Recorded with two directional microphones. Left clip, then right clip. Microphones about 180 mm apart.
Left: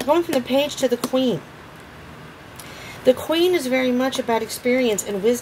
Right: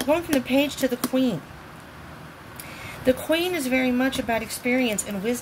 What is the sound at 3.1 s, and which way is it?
A woman's voice, 40° left (ahead or behind).